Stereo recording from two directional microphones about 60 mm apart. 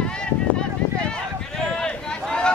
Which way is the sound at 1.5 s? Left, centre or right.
Centre.